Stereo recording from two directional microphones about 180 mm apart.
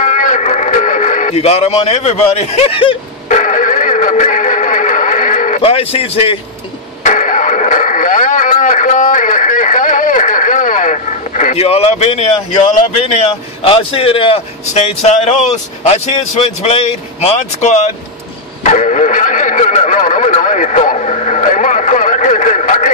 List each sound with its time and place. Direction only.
0.0 s music: 45° left (ahead or behind)
3.3 s music: 45° left (ahead or behind)
5.6 s speech: 30° left (ahead or behind)
7.0 s radio: 45° left (ahead or behind)
12.9 s a man's voice: 35° left (ahead or behind)
18.6 s radio: 40° left (ahead or behind)